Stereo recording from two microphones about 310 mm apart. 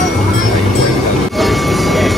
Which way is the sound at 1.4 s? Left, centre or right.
Centre.